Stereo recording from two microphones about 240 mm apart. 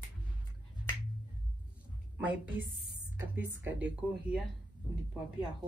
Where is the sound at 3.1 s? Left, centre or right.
Centre.